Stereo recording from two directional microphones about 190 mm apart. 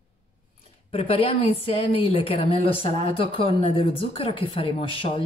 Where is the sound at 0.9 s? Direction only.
30° left (ahead or behind).